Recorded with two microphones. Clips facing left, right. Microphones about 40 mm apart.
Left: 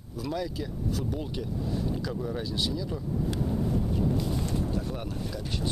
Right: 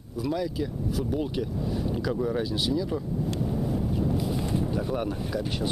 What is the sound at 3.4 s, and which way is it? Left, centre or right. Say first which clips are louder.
Boat: right 1 dB; centre.